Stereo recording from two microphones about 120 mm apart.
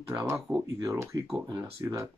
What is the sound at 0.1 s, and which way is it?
Speech, 25° right (ahead or behind).